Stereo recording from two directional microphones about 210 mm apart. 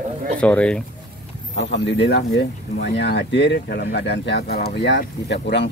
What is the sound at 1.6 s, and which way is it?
Speech, 55° left (ahead or behind).